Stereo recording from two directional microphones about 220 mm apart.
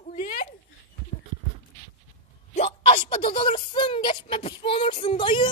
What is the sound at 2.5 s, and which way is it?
A woman's voice, 25° left (ahead or behind).